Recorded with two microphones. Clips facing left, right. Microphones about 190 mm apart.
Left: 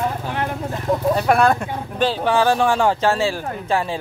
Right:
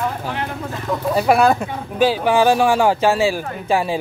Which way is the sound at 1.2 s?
5° right (ahead or behind).